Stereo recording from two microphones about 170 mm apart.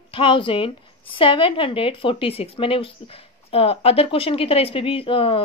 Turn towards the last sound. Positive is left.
turn(degrees=30)  # may be behind; listen again after turning